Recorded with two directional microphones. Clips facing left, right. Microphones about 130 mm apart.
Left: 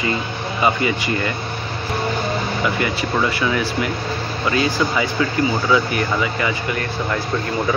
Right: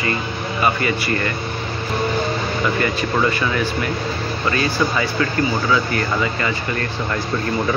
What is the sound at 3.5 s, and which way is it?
Speech, 10° left (ahead or behind).